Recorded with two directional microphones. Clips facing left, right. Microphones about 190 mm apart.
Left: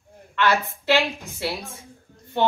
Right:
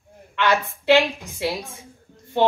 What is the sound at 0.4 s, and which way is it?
A man's voice, 15° right (ahead or behind).